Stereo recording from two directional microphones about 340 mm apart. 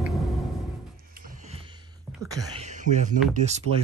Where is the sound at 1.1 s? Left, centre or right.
Right.